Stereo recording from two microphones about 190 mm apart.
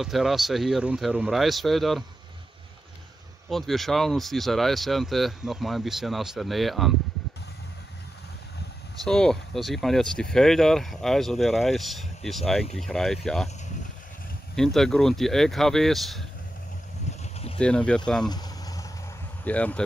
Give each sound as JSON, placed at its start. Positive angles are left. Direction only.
{"t": 0.0, "sound": "speech", "side_deg": 0}
{"t": 3.4, "sound": "speech", "side_deg": 0}
{"t": 9.0, "sound": "speech", "side_deg": 5}
{"t": 14.5, "sound": "speech", "side_deg": 0}
{"t": 17.2, "sound": "a sound", "side_deg": 30}
{"t": 17.6, "sound": "speech", "side_deg": 5}
{"t": 18.2, "sound": "vehicle", "side_deg": 20}
{"t": 19.4, "sound": "speech", "side_deg": 5}